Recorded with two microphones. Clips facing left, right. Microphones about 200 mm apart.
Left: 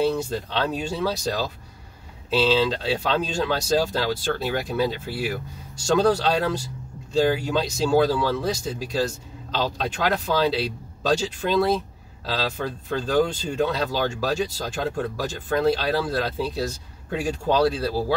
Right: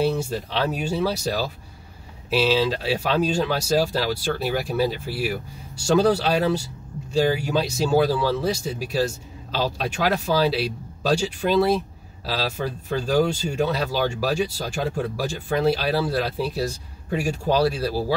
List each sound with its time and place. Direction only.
0.1 s speech: 10° right (ahead or behind)